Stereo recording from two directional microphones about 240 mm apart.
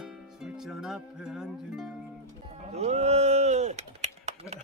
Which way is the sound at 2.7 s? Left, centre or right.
Right.